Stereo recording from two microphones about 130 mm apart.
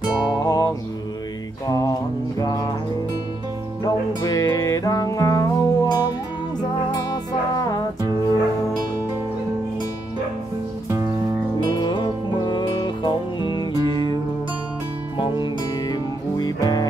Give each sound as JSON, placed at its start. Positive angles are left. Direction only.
{"t": 0.3, "sound": "music", "side_deg": 30}
{"t": 1.7, "sound": "music", "side_deg": 30}
{"t": 3.8, "sound": "music", "side_deg": 30}
{"t": 7.5, "sound": "music", "side_deg": 30}
{"t": 11.6, "sound": "music", "side_deg": 35}
{"t": 15.4, "sound": "music", "side_deg": 35}